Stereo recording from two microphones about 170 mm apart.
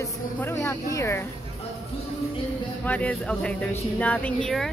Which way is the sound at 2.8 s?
10° left (ahead or behind).